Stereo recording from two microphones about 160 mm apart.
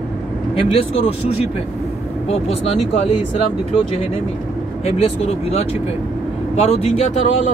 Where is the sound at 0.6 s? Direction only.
35° left (ahead or behind).